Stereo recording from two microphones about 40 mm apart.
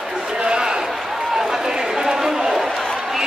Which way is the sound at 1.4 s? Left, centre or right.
Centre.